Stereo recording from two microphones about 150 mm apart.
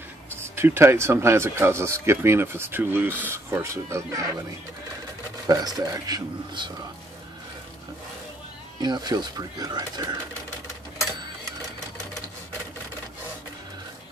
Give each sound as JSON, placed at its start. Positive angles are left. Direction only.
{"t": 0.6, "sound": "speech", "side_deg": -15}
{"t": 5.5, "sound": "speech", "side_deg": -25}
{"t": 8.8, "sound": "speech", "side_deg": -25}